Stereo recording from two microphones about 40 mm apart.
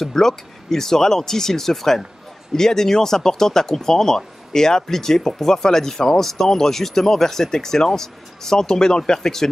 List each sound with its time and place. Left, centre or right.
0.1 s speech: centre